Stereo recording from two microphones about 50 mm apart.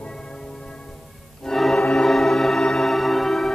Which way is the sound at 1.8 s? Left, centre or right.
Centre.